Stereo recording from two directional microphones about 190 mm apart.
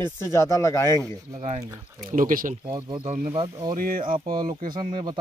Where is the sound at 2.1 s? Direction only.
45° right (ahead or behind).